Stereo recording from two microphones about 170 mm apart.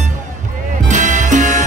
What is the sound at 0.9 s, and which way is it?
Music, 50° right (ahead or behind).